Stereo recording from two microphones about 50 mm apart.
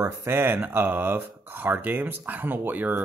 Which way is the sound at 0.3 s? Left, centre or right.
Right.